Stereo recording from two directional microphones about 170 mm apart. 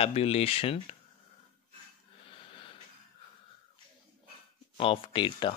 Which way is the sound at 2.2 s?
30° left (ahead or behind).